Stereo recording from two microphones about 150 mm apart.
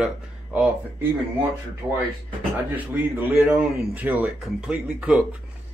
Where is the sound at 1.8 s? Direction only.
10° right (ahead or behind).